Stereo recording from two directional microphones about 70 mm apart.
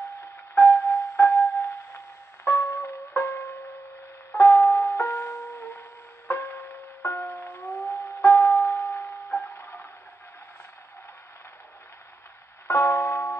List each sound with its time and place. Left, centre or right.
0.6 s music: left
9.6 s a sound: left
12.6 s music: left